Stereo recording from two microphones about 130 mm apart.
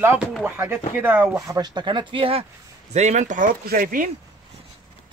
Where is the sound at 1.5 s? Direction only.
35° right (ahead or behind).